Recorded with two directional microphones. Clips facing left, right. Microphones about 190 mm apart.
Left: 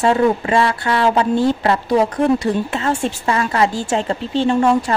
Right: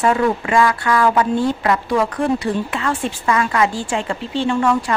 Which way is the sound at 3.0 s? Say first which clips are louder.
Even; 35° left (ahead or behind).